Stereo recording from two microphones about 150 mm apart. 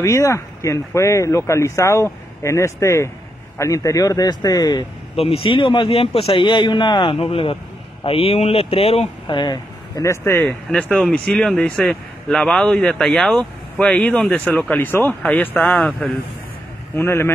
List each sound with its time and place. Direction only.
0.0 s speech: 20° left (ahead or behind)
5.1 s a man's voice: 40° left (ahead or behind); by 17.3 s 15° left (ahead or behind)